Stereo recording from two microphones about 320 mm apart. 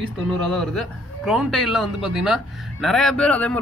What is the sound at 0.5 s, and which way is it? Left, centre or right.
A man's voice, centre.